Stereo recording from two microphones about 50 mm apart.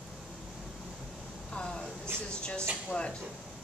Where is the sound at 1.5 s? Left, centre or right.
Centre.